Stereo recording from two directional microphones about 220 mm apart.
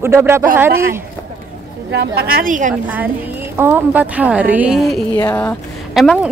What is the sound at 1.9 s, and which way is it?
Speech, 45° right (ahead or behind).